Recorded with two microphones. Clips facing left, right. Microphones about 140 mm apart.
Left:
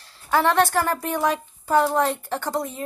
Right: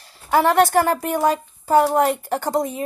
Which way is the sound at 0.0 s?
15° right (ahead or behind).